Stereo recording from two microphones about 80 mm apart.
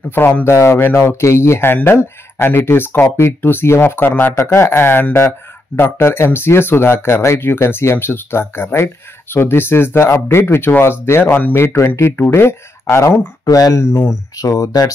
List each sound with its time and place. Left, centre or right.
0.1 s speech: left
4.3 s speech: left
13.5 s speech: left